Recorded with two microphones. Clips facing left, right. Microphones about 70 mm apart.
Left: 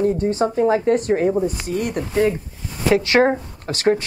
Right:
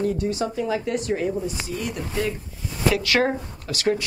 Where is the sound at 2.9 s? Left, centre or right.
Left.